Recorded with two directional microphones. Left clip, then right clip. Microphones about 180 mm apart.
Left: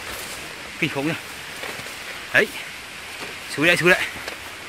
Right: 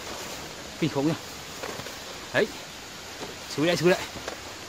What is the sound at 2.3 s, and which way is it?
Speech, centre (ahead or behind).